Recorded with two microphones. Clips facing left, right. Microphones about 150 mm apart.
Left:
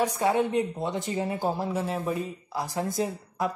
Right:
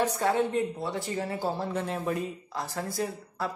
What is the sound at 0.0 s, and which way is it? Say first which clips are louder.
A woman's voice: left 2 dB; 15° left (ahead or behind).